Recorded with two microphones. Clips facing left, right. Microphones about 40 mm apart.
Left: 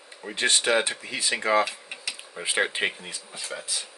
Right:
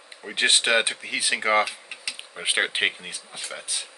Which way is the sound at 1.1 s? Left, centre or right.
Right.